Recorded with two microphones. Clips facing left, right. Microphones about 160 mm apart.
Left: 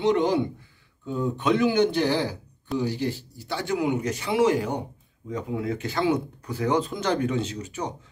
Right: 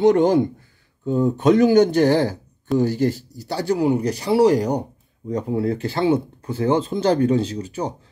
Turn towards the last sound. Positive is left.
turn(degrees=-30)  # may be behind; listen again after turning